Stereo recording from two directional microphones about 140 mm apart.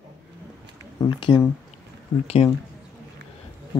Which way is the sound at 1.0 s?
35° left (ahead or behind).